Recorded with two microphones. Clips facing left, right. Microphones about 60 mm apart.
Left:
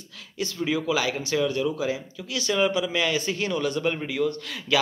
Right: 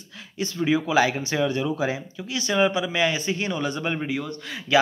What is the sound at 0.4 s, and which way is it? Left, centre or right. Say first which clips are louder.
Speech: right 3 dB; right.